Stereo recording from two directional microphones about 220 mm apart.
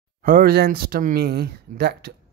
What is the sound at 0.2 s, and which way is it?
Speech, 40° right (ahead or behind).